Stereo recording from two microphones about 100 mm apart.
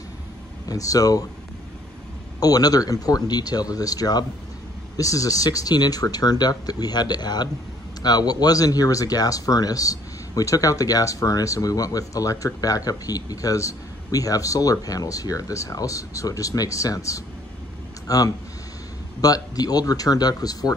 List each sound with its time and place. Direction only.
0.7 s speech: 35° left (ahead or behind)
2.4 s speech: 40° left (ahead or behind)